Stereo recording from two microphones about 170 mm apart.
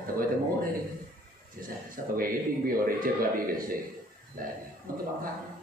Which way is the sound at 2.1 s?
55° right (ahead or behind).